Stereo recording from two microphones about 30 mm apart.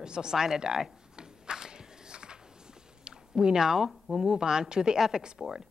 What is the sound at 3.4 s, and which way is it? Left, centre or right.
Speech, right.